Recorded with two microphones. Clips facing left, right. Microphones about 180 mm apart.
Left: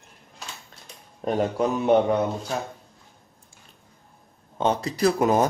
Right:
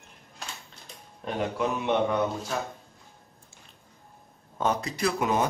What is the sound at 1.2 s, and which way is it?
Speech, 45° left (ahead or behind).